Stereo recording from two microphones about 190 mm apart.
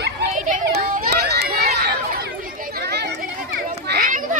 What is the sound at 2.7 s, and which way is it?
Chatter, 60° right (ahead or behind).